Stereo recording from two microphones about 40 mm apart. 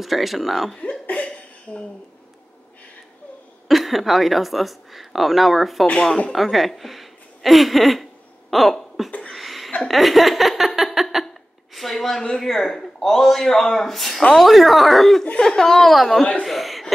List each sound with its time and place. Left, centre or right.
0.0 s speech: centre
0.7 s cough: left
3.6 s speech: centre
6.3 s a sound: centre
9.8 s a woman's voice: centre
15.9 s speech: centre